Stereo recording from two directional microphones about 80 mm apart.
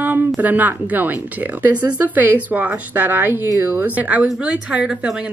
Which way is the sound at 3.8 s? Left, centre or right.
Centre.